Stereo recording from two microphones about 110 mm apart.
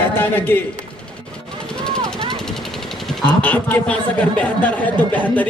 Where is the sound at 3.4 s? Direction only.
15° left (ahead or behind).